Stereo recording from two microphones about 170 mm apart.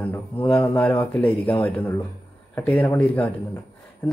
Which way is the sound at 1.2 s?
30° left (ahead or behind).